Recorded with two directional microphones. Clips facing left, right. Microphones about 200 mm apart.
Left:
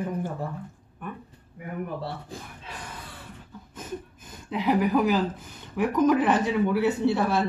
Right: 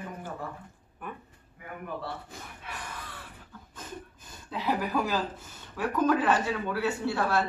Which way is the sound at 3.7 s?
20° left (ahead or behind).